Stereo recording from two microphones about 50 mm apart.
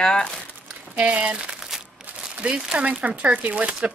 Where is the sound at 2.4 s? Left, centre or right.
Right.